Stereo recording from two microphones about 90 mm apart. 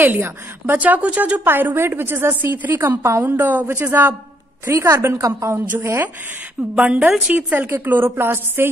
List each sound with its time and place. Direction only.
0.0 s a woman's voice: 20° right (ahead or behind)
6.7 s a woman's voice: 15° right (ahead or behind)